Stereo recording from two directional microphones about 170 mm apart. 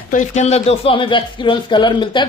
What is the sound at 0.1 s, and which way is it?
Speech, 45° left (ahead or behind).